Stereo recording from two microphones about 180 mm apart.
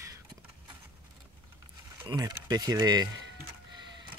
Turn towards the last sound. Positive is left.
turn(degrees=-20)  # may be behind; listen again after turning